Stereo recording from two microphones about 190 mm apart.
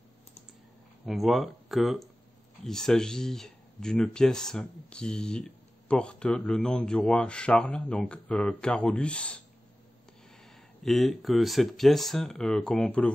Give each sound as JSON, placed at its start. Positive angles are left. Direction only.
{"t": 1.0, "sound": "speech", "side_deg": 0}
{"t": 10.8, "sound": "speech", "side_deg": 0}